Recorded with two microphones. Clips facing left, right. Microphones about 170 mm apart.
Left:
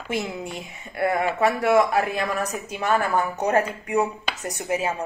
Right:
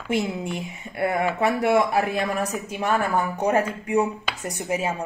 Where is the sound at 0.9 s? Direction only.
20° right (ahead or behind).